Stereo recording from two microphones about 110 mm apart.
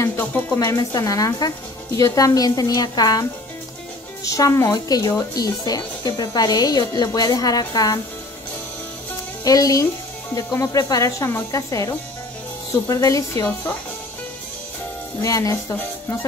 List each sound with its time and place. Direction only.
0.0 s speech: 15° left (ahead or behind)
0.7 s speech: 30° left (ahead or behind)
9.4 s speech: 35° left (ahead or behind)
15.2 s speech: 30° left (ahead or behind)